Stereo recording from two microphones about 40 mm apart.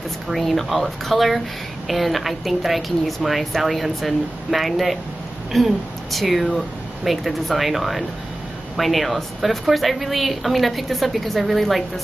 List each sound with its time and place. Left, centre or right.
0.3 s a woman's voice: centre